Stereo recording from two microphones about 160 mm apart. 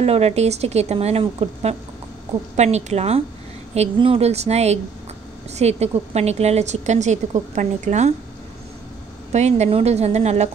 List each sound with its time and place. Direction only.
0.0 s a woman's voice: 40° right (ahead or behind)
9.3 s a woman's voice: 45° right (ahead or behind)